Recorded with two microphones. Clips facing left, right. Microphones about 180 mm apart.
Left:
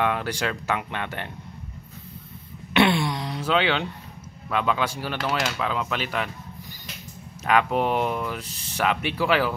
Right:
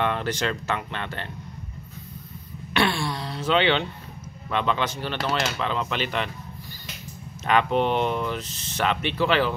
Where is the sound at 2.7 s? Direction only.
20° left (ahead or behind).